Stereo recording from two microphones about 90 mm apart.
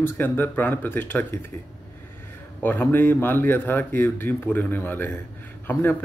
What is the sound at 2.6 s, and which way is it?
Speech, 25° left (ahead or behind).